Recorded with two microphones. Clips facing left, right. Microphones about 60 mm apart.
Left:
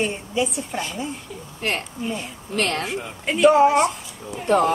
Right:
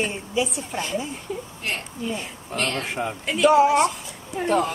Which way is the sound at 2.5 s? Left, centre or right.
Left.